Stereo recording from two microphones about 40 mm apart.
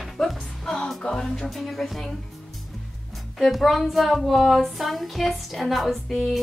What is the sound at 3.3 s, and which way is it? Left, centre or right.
Speech, centre.